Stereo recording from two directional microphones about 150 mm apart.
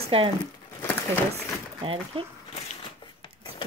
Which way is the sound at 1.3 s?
35° right (ahead or behind).